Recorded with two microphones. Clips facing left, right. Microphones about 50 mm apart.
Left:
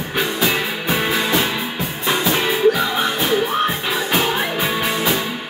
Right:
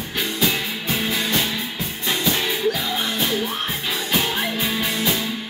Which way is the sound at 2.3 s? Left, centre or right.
Left.